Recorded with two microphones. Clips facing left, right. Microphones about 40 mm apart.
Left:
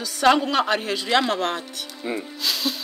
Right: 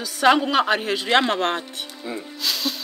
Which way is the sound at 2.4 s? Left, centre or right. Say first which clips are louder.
Even; centre.